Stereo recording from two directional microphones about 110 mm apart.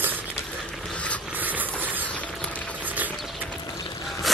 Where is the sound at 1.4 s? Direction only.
15° right (ahead or behind).